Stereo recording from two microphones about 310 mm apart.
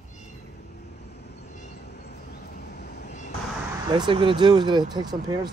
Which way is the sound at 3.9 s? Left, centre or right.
Centre.